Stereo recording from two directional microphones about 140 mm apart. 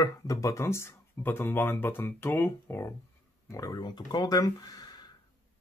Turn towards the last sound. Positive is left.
turn(degrees=30)  # may be behind; listen again after turning